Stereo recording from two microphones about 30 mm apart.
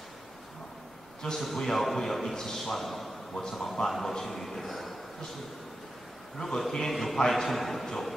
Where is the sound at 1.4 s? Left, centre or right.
Centre.